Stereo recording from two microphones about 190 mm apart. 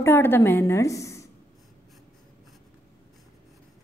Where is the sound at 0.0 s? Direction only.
10° left (ahead or behind).